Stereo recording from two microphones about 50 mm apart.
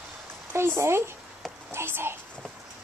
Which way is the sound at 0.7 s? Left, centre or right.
Right.